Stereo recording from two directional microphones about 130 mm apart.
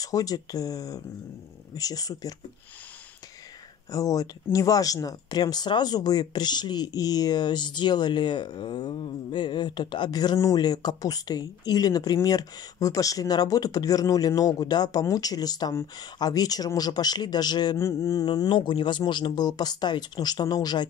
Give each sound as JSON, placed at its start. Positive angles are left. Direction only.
{"t": 0.0, "sound": "speech", "side_deg": 30}
{"t": 3.9, "sound": "speech", "side_deg": 25}